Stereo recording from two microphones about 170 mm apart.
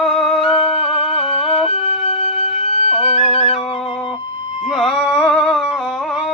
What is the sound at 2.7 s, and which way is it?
Music, 40° left (ahead or behind).